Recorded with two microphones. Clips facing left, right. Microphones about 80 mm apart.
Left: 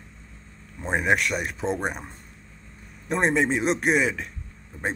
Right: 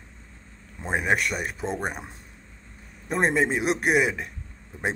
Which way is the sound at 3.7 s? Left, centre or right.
Right.